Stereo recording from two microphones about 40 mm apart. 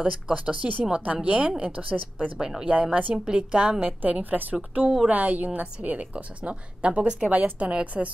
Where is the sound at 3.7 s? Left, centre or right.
Right.